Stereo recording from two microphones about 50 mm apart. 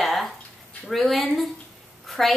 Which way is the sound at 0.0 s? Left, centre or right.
Centre.